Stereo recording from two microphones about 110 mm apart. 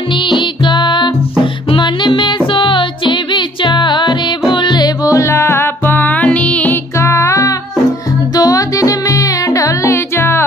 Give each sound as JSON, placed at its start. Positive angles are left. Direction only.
{"t": 0.3, "sound": "music", "side_deg": 45}
{"t": 7.0, "sound": "music", "side_deg": 25}